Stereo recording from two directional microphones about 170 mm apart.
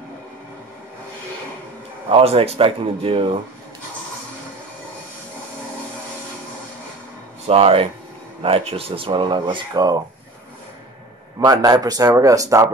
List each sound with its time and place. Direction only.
2.0 s speech: 35° right (ahead or behind)
7.4 s speech: 35° right (ahead or behind)
11.3 s speech: 20° right (ahead or behind)